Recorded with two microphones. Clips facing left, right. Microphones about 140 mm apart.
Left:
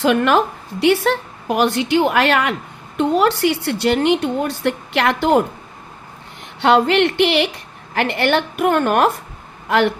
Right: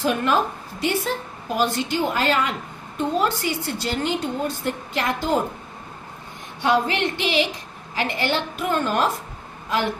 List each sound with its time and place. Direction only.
0.0 s a woman's voice: 75° left (ahead or behind)
6.6 s a woman's voice: 70° left (ahead or behind)